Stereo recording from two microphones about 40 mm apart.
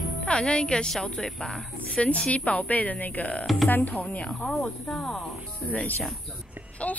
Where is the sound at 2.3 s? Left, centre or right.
Left.